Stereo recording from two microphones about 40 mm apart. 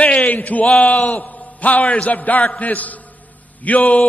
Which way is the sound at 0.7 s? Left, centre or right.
Left.